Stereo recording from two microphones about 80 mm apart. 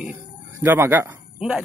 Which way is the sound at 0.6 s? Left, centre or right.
Right.